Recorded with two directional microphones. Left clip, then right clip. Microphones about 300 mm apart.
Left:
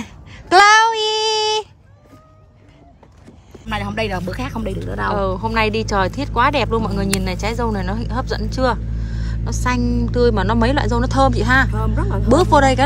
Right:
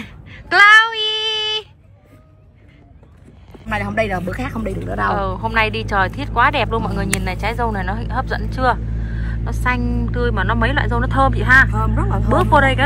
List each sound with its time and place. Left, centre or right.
0.0 s child singing: centre
3.6 s speech: centre
5.1 s speech: centre
11.7 s speech: centre
12.3 s speech: centre